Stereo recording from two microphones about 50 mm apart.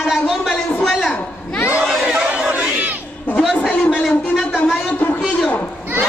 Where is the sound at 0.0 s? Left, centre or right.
Centre.